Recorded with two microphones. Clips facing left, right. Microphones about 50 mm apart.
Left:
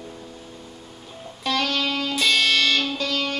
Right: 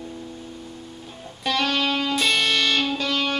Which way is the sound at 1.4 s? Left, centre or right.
Right.